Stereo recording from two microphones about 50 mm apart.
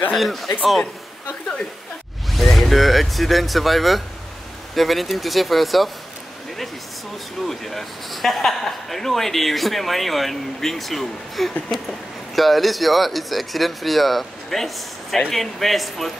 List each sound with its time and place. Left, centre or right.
0.1 s speech: centre
2.3 s speech: centre
7.4 s speech: centre